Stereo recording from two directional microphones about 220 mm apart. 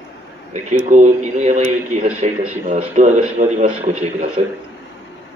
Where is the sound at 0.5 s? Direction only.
35° right (ahead or behind).